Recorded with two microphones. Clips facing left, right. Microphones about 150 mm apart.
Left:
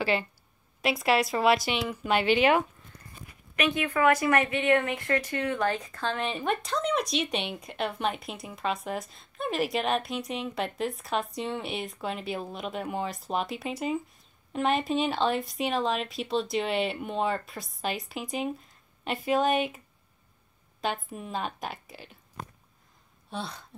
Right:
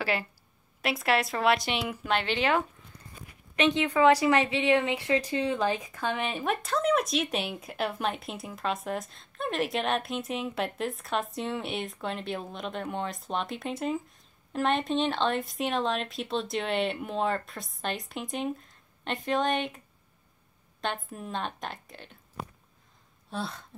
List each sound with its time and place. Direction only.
0.0 s a woman's voice: centre (ahead or behind)
3.5 s speech: 20° right (ahead or behind); by 19.8 s 5° left (ahead or behind)
20.8 s speech: 5° left (ahead or behind)
23.3 s speech: centre (ahead or behind)